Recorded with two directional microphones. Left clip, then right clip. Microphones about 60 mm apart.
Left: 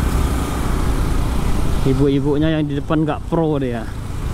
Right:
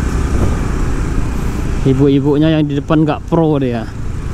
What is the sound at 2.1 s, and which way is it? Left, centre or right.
Speech, right.